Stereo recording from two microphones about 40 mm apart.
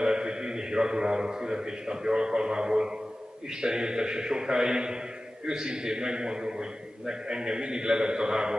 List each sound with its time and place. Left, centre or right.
0.0 s a man's voice: centre